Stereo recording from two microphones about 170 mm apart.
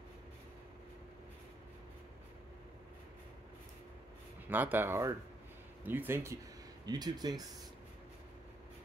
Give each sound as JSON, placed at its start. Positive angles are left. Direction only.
{"t": 4.5, "sound": "speech", "side_deg": -10}